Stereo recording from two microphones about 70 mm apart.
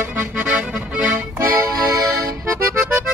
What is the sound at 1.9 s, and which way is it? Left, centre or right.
Accordion, right.